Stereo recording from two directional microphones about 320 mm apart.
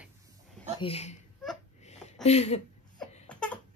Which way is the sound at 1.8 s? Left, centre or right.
Centre.